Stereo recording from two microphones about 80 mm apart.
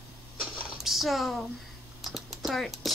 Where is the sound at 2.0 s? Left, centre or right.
Centre.